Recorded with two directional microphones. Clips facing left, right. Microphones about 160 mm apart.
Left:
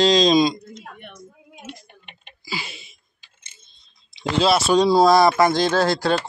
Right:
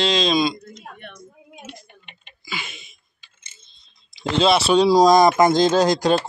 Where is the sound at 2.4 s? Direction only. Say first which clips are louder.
Left 2 dB; 35° left (ahead or behind).